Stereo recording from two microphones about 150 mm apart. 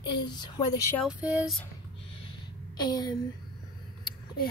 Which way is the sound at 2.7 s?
30° left (ahead or behind).